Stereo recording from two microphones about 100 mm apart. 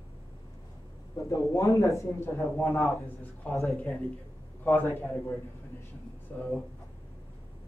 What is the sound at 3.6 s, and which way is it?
Speech, 5° left (ahead or behind).